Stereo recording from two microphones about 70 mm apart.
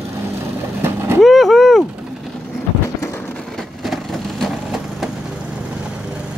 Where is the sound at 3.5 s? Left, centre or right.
Centre.